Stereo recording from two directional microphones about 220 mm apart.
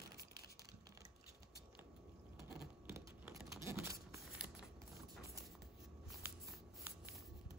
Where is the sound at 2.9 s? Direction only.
10° right (ahead or behind).